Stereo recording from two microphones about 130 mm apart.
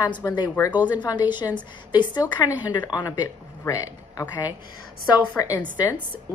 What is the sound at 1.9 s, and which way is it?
A woman's voice, 35° left (ahead or behind).